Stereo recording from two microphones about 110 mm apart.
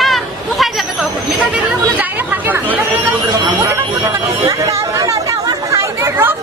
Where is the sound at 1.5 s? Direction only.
15° right (ahead or behind).